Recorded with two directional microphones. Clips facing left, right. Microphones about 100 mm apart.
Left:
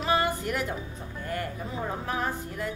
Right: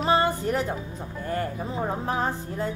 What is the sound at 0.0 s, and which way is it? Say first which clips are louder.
A woman's voice: right 4 dB; 30° right (ahead or behind).